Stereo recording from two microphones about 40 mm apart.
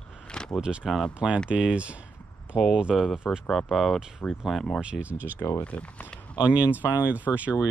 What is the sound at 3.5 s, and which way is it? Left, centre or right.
Speech, centre.